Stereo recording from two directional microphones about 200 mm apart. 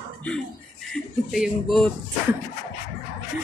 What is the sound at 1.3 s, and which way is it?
Speech, centre (ahead or behind).